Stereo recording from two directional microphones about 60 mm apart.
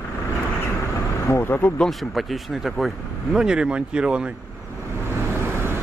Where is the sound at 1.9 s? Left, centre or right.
Centre.